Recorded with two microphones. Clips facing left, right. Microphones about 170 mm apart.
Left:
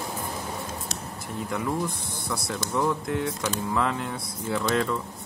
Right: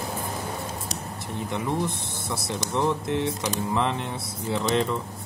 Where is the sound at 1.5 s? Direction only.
25° right (ahead or behind).